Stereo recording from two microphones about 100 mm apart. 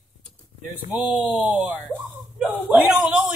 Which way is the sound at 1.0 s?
10° right (ahead or behind).